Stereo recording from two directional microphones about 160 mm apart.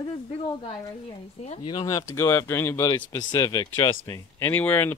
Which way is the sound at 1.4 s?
35° left (ahead or behind).